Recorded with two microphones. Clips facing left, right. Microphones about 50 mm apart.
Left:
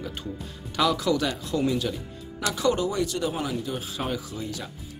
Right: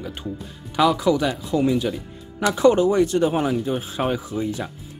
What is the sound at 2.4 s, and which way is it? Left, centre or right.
Speech, right.